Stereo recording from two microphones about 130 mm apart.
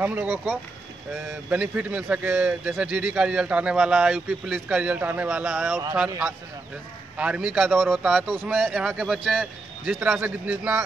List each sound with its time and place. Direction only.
0.0 s speech: 15° right (ahead or behind)
5.7 s speech: 25° right (ahead or behind)
7.2 s a man's voice: 10° right (ahead or behind)